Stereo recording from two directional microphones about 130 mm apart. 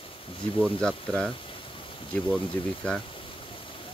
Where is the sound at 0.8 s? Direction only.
5° left (ahead or behind).